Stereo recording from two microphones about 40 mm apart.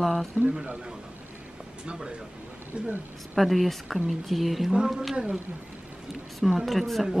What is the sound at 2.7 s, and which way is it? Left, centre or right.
Speech, right.